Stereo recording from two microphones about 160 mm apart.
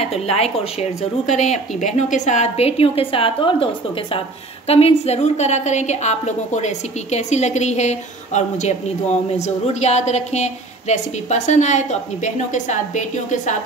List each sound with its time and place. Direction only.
0.0 s a woman's voice: 40° left (ahead or behind)